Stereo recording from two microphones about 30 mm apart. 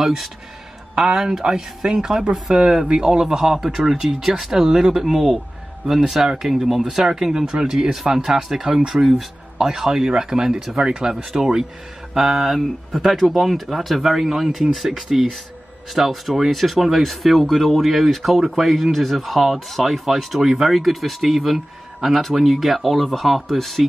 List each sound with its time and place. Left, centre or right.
1.1 s speech: centre
1.8 s speech: right
10.8 s speech: right
11.1 s speech: right
15.9 s speech: centre